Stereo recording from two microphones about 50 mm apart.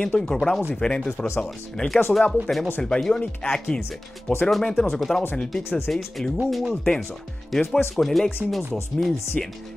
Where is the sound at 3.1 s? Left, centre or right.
Centre.